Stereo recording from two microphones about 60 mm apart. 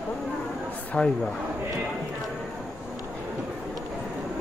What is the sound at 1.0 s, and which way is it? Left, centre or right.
Speech, left.